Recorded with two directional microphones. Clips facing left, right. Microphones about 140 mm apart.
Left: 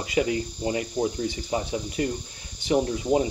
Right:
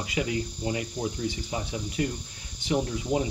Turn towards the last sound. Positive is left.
turn(degrees=30)  # may be behind; listen again after turning